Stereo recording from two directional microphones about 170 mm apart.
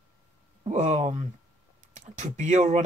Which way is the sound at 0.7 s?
45° right (ahead or behind).